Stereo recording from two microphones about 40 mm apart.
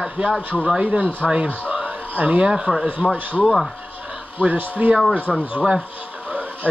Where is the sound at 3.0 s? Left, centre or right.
Centre.